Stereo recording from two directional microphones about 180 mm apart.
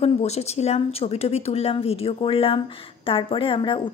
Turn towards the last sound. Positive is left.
turn(degrees=25)  # may be behind; listen again after turning